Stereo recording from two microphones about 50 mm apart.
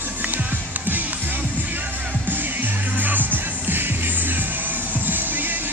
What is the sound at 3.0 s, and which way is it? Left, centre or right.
Music, right.